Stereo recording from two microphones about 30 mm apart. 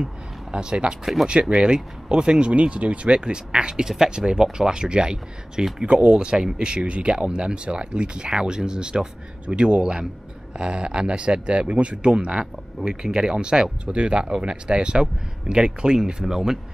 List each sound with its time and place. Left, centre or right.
0.0 s a sound: right
1.4 s speech: right
2.5 s speech: right
3.2 s speech: right
12.8 s speech: right